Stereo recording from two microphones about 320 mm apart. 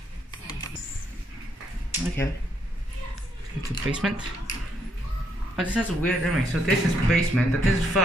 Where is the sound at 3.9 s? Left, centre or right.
Centre.